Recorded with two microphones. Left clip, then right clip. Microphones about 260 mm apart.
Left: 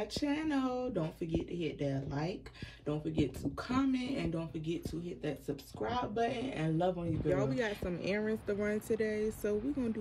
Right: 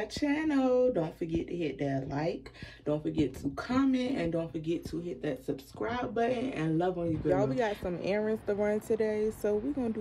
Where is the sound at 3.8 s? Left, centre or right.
Centre.